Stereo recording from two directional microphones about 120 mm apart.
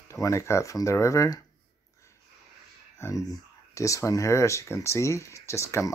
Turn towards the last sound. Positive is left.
turn(degrees=25)  # may be behind; listen again after turning